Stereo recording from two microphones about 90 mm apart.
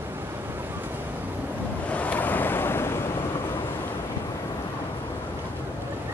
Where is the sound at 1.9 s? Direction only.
15° left (ahead or behind).